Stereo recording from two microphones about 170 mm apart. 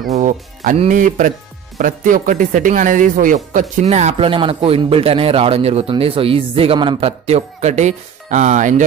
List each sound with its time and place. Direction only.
0.1 s speech: 45° right (ahead or behind)